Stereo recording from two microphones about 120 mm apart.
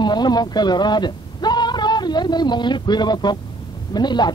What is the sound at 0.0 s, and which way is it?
A man's voice, 35° left (ahead or behind).